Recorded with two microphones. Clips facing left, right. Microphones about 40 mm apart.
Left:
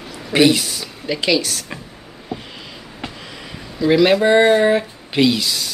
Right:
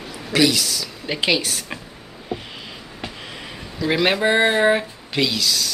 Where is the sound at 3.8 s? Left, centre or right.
Centre.